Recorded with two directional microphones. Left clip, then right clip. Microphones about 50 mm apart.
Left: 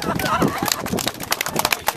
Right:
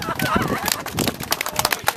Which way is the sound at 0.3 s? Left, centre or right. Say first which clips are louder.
Left 2 dB; left.